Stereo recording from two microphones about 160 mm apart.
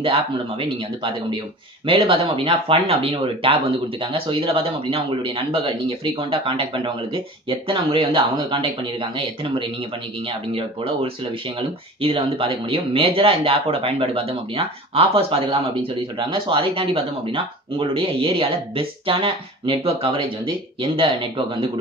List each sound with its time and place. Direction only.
0.0 s speech: 35° right (ahead or behind)